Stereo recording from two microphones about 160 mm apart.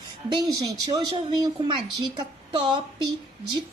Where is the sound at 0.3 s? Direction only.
25° right (ahead or behind).